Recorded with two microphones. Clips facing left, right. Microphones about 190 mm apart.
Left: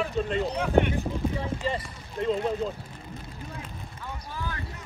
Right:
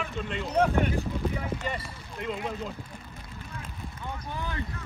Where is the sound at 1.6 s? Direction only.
30° left (ahead or behind).